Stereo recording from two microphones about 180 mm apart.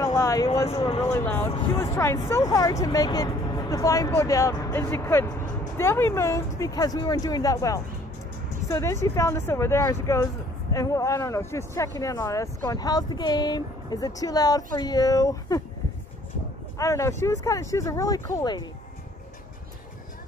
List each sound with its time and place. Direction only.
0.0 s a sound: 15° left (ahead or behind)
1.0 s speech: 15° left (ahead or behind)
16.7 s speech: 15° left (ahead or behind)